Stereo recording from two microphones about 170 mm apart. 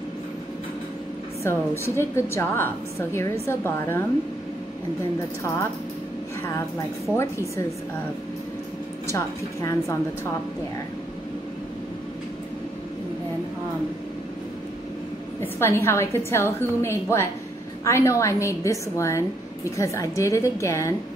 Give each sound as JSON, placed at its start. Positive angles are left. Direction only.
{"t": 1.4, "sound": "a woman's voice", "side_deg": 15}
{"t": 7.2, "sound": "a woman's voice", "side_deg": 15}
{"t": 9.0, "sound": "a woman's voice", "side_deg": 20}
{"t": 15.4, "sound": "a woman's voice", "side_deg": 15}